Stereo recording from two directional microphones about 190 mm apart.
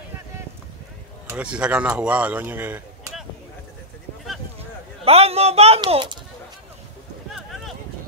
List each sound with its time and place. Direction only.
1.3 s speech: 5° right (ahead or behind)
5.0 s speech: 30° right (ahead or behind)